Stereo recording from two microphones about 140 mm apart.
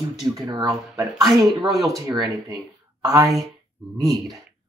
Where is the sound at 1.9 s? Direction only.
25° right (ahead or behind).